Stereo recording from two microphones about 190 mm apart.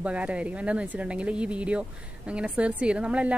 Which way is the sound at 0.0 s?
5° right (ahead or behind).